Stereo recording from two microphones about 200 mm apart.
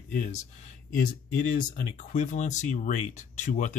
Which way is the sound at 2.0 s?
40° left (ahead or behind).